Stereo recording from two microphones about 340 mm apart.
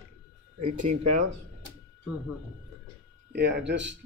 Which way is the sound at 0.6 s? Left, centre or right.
Right.